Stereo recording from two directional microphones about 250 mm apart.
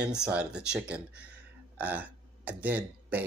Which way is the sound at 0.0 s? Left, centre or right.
Centre.